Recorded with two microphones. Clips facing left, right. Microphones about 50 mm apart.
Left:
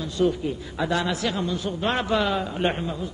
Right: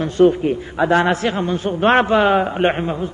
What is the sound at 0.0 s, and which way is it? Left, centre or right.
A man's voice, right.